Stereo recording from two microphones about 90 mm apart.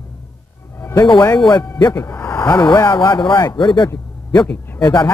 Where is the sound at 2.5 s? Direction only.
50° left (ahead or behind).